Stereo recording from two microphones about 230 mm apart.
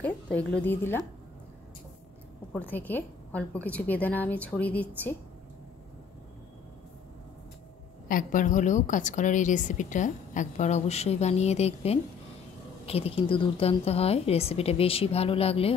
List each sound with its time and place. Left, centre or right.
0.0 s a woman's voice: centre
2.5 s a woman's voice: centre
8.1 s a woman's voice: left